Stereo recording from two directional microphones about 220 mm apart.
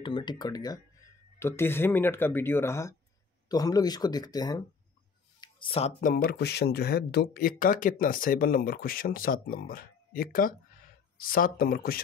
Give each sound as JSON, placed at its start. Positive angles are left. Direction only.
{"t": 0.0, "sound": "speech", "side_deg": 20}